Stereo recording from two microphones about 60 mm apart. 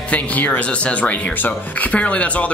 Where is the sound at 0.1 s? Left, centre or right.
Left.